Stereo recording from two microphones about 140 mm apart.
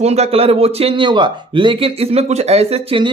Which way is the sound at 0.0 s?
50° right (ahead or behind).